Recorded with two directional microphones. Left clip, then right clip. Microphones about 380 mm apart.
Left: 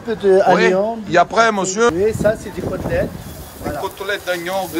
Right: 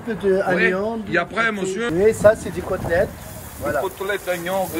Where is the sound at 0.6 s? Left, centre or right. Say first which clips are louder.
Left 4 dB; centre.